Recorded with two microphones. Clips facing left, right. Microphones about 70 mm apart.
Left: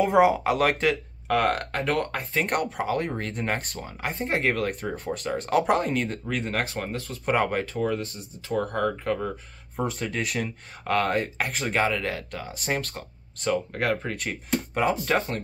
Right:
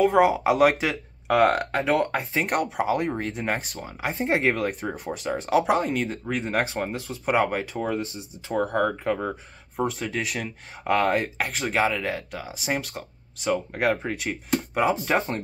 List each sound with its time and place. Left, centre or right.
0.0 s speech: centre
0.4 s speech: centre
4.1 s speech: right; by 6.1 s centre
6.5 s speech: centre
7.1 s speech: centre
7.8 s speech: centre
9.8 s speech: centre
15.0 s speech: right